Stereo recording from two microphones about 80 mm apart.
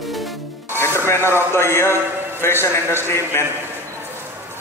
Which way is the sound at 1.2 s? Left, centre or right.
Right.